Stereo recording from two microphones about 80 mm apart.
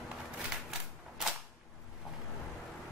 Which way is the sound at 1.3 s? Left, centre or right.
Centre.